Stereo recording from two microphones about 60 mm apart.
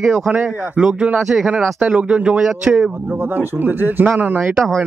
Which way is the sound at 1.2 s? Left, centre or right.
Centre.